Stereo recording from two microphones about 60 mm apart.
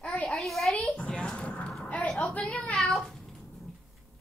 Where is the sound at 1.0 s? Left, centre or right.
Centre.